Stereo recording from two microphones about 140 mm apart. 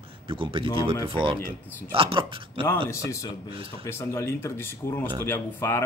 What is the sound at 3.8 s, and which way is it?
A man's voice, 20° left (ahead or behind).